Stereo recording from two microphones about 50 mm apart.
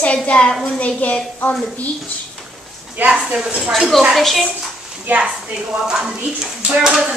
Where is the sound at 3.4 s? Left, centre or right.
Centre.